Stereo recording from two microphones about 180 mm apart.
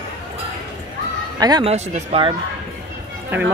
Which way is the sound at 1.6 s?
40° right (ahead or behind).